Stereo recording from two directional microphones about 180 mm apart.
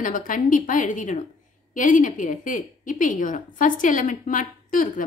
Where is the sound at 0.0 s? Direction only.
45° left (ahead or behind).